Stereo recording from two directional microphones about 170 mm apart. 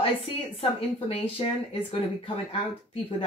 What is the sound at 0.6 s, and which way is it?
Speech, 35° left (ahead or behind).